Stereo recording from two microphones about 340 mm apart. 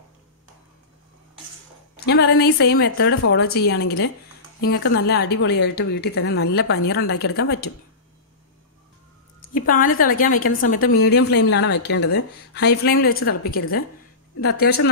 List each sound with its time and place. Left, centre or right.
2.0 s a woman's voice: left
9.7 s a woman's voice: left